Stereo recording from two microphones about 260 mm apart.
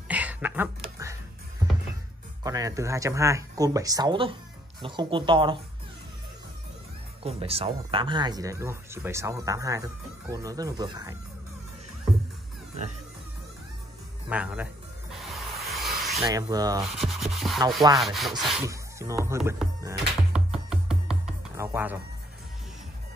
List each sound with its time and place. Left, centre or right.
0.1 s a sound: centre
2.4 s speech: centre
7.2 s speech: right
14.3 s speech: centre
15.2 s a sound: centre
16.2 s speech: centre
16.8 s scratch: centre
18.0 s speech: centre
18.7 s music: centre